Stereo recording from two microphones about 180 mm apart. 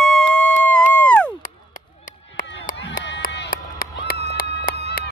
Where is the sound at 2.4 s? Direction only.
50° left (ahead or behind); by 5.1 s 65° left (ahead or behind).